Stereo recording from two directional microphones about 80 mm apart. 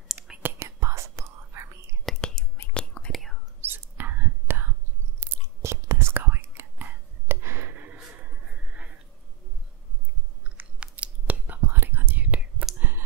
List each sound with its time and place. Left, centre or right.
0.4 s whispering: right
0.7 s whispering: right
2.0 s whispering: centre
3.1 s whispering: centre
3.6 s whispering: right
8.2 s a sound: centre
10.6 s whispering: centre